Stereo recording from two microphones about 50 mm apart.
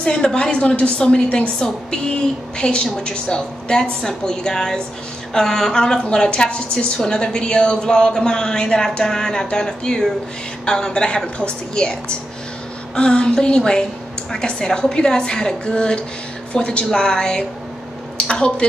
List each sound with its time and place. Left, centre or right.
0.0 s a woman's voice: centre